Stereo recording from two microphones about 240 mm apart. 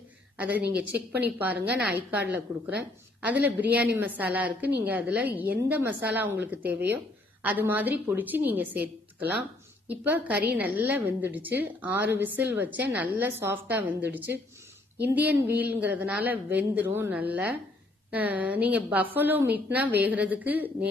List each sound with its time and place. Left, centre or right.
0.6 s speech: right
1.8 s a woman's voice: centre